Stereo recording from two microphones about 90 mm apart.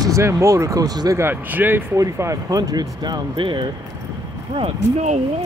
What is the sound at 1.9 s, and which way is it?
Speech, 35° right (ahead or behind).